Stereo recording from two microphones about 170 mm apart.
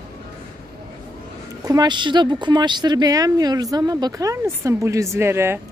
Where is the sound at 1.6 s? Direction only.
20° right (ahead or behind).